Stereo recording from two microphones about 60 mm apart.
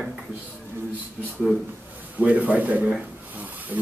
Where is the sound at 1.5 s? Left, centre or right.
Right.